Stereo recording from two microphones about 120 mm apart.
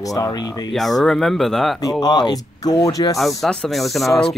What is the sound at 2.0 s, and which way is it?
Speech, 35° left (ahead or behind).